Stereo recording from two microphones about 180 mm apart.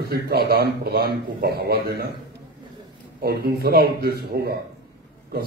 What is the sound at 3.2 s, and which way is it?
A man's voice, 60° right (ahead or behind).